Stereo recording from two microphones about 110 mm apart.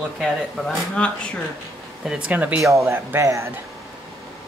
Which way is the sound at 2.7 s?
25° right (ahead or behind).